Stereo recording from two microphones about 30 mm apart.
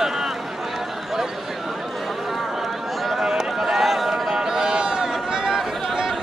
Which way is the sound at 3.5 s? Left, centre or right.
Centre.